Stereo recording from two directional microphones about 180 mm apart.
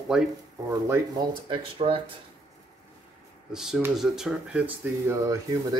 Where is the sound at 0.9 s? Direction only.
25° right (ahead or behind).